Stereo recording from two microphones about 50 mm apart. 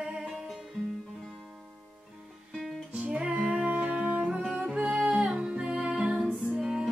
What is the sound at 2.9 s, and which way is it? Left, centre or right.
Music, right.